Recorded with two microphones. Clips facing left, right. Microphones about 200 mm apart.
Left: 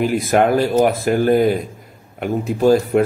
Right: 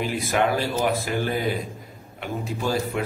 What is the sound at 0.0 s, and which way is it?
Speech, 50° left (ahead or behind).